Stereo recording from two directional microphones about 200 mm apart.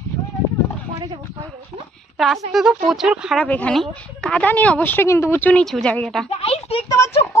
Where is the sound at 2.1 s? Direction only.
Centre (ahead or behind).